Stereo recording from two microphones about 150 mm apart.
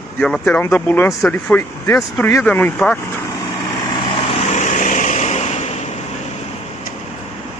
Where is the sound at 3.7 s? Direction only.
30° left (ahead or behind); by 6.0 s 45° left (ahead or behind).